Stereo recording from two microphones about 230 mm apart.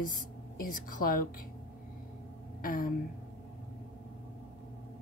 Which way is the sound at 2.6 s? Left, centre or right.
Left.